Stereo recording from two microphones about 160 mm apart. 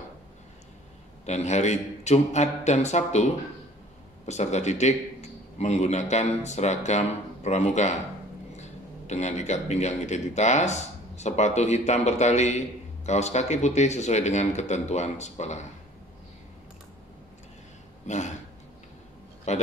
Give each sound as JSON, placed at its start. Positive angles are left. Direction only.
{"t": 1.2, "sound": "a man's voice", "side_deg": 45}
{"t": 4.3, "sound": "a man's voice", "side_deg": 45}
{"t": 18.0, "sound": "speech", "side_deg": 45}
{"t": 19.5, "sound": "a man's voice", "side_deg": 45}